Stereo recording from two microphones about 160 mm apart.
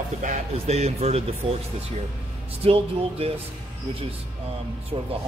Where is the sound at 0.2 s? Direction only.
45° right (ahead or behind).